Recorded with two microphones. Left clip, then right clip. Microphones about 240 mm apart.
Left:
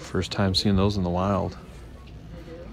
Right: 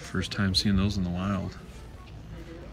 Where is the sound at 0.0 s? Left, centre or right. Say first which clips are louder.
Left 5 dB; centre.